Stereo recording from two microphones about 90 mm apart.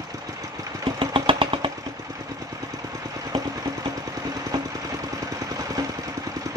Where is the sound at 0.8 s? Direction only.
70° right (ahead or behind).